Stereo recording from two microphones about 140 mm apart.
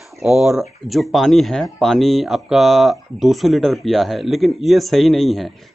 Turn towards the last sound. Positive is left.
turn(degrees=0)  # may be behind; listen again after turning